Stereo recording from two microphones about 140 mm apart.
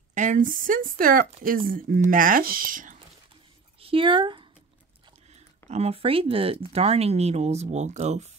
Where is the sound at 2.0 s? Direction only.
75° right (ahead or behind).